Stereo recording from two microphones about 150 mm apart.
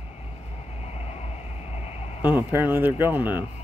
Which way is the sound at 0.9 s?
45° left (ahead or behind).